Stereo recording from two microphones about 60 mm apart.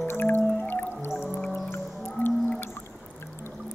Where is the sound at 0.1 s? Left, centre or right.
Left.